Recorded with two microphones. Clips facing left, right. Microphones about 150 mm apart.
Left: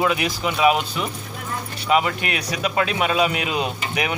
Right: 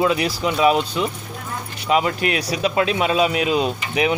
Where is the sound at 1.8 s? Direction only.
35° right (ahead or behind).